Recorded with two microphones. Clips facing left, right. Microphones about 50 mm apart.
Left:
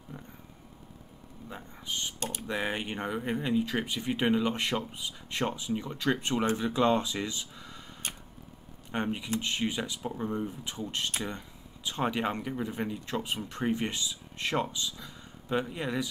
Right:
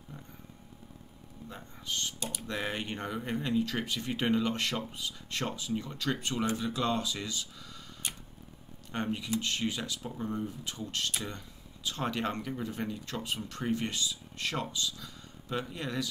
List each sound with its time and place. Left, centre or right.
0.1 s a sound: centre
1.5 s speech: centre
8.9 s speech: centre